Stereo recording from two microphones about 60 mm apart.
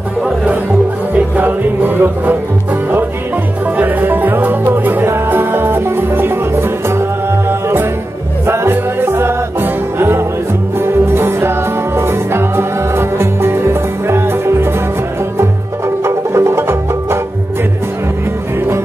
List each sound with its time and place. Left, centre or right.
1.1 s music: right
3.7 s music: right
16.0 s music: right